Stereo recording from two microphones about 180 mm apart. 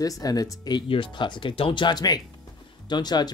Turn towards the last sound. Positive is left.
turn(degrees=25)  # may be behind; listen again after turning